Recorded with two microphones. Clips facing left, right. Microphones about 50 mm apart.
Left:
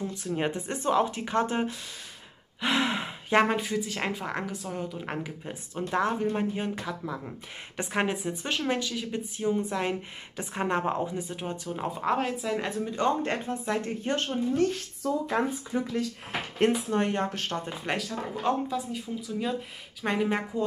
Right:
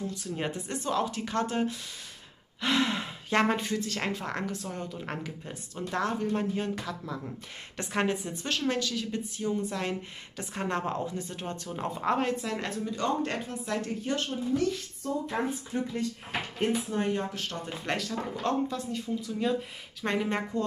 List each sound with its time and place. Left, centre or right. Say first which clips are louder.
0.1 s speech: left 4 dB; left
3.4 s a woman's voice: left 1 dB; centre
12.9 s speech: left 3 dB; left
15.0 s speech: left 3 dB; left
16.3 s speech: left 5 dB; left
17.8 s a woman's voice: right 2 dB; centre